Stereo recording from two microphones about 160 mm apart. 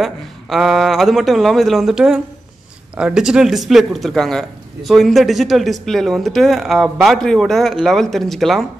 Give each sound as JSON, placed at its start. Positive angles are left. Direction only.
{"t": 0.0, "sound": "a man's voice", "side_deg": 0}